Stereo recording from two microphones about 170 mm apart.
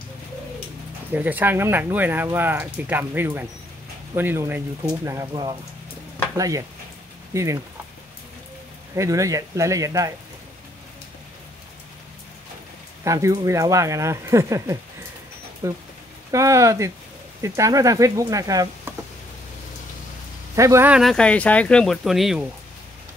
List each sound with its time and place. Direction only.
1.1 s speech: 10° right (ahead or behind)
8.9 s speech: 20° right (ahead or behind)
13.0 s speech: 20° right (ahead or behind)
20.5 s speech: 15° right (ahead or behind)
21.0 s speech: 5° left (ahead or behind)